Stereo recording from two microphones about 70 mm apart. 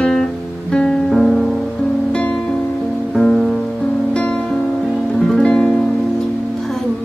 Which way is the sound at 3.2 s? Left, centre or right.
Centre.